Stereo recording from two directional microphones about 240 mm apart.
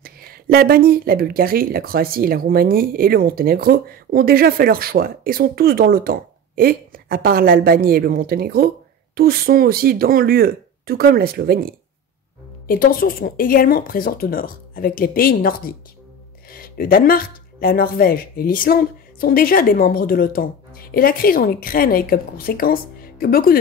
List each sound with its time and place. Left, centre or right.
0.0 s speech: right
12.6 s speech: left